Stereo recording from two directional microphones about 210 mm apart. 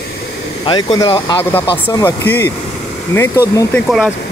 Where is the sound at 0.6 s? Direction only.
20° left (ahead or behind).